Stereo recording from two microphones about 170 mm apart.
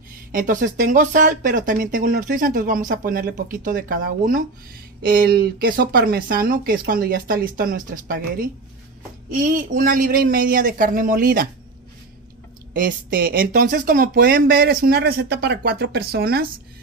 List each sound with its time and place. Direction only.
0.3 s speech: 55° right (ahead or behind)
12.7 s speech: 55° right (ahead or behind)